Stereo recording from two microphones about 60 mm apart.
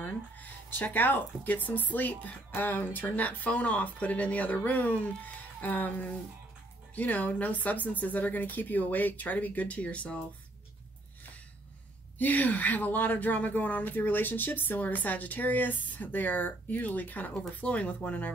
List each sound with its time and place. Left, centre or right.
0.0 s speech: left
12.2 s speech: left